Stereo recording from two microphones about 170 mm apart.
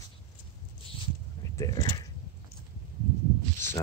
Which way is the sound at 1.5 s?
20° left (ahead or behind).